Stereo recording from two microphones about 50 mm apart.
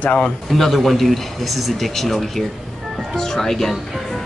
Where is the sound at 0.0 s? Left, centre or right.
Left.